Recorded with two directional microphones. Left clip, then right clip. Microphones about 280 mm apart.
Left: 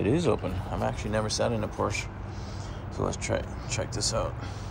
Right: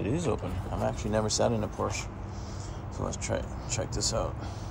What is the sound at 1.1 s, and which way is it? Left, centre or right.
Speech, right.